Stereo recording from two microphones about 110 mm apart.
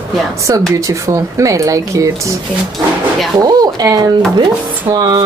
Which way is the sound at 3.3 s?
40° right (ahead or behind).